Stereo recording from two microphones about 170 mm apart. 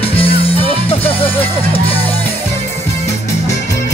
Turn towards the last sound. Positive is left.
turn(degrees=35)  # may be behind; listen again after turning